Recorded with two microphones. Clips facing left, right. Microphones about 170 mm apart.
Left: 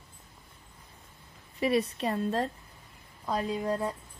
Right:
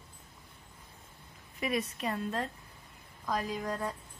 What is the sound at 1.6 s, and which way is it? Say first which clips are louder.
A woman's voice: left 6 dB; 30° left (ahead or behind).